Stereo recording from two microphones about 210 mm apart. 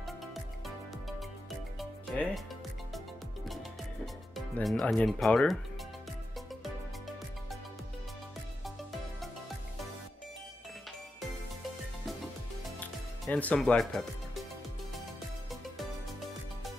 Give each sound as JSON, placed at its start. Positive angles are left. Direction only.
{"t": 0.0, "sound": "music", "side_deg": 0}
{"t": 4.6, "sound": "speech", "side_deg": 5}
{"t": 13.2, "sound": "speech", "side_deg": 5}
{"t": 15.5, "sound": "music", "side_deg": 0}